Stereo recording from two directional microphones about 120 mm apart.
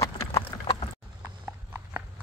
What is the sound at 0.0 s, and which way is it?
Clip-clop, 25° left (ahead or behind).